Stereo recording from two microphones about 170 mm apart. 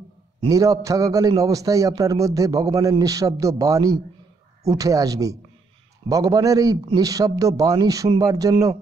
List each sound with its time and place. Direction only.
0.5 s a man's voice: 20° right (ahead or behind)